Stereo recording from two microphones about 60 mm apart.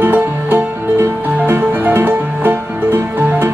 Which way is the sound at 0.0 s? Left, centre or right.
Right.